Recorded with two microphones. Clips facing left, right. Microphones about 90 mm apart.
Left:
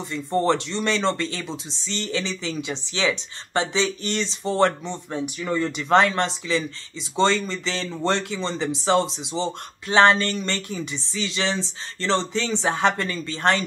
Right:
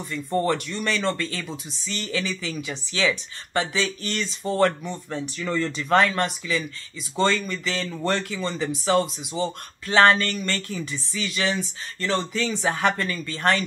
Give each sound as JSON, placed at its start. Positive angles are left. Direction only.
{"t": 0.1, "sound": "speech", "side_deg": 25}